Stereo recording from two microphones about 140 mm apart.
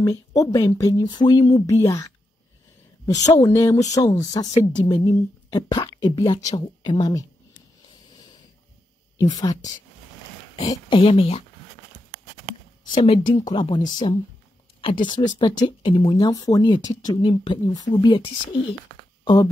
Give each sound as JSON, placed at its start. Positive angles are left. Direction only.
{"t": 0.0, "sound": "speech", "side_deg": 25}
{"t": 3.3, "sound": "speech", "side_deg": 25}
{"t": 9.2, "sound": "a woman's voice", "side_deg": 30}
{"t": 12.9, "sound": "speech", "side_deg": 45}
{"t": 13.4, "sound": "a woman's voice", "side_deg": 35}
{"t": 16.2, "sound": "a woman's voice", "side_deg": 25}